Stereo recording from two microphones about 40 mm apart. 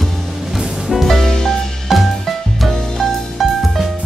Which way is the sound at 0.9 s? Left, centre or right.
Centre.